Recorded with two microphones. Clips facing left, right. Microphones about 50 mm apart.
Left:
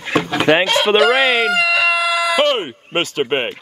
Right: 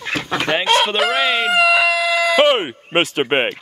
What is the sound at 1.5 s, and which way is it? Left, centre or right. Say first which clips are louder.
Speech: right 2 dB; right.